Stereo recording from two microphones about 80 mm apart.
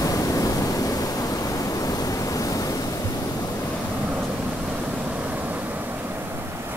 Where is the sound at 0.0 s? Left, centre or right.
Left.